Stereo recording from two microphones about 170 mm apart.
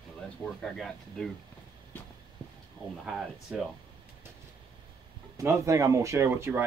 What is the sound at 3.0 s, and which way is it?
Speech, 5° right (ahead or behind).